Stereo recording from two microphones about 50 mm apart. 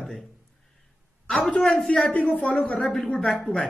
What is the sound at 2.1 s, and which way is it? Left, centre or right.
Speech, left.